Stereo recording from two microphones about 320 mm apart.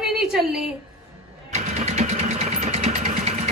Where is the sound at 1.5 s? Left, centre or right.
Centre.